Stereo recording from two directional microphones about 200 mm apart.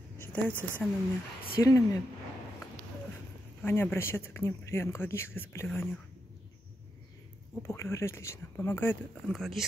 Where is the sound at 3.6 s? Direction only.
10° left (ahead or behind).